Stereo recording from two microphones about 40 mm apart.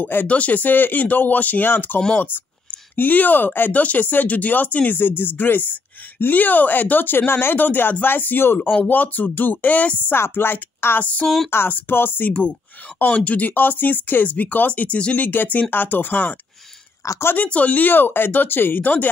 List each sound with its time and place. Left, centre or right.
0.0 s speech: left
0.3 s speech: left
3.7 s speech: left
7.5 s speech: left
10.1 s speech: left
11.0 s speech: left
11.2 s speech: centre
11.9 s speech: left
12.3 s speech: left
13.6 s speech: left
15.7 s speech: left
17.5 s speech: left